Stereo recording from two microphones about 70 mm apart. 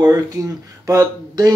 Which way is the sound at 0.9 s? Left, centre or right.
Right.